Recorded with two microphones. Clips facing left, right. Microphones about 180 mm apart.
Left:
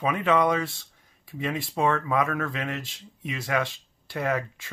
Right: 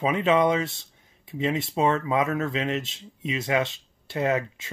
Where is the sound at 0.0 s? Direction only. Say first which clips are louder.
Right 2 dB; 25° right (ahead or behind).